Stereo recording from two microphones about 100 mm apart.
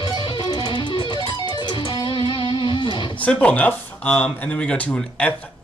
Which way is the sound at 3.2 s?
15° left (ahead or behind).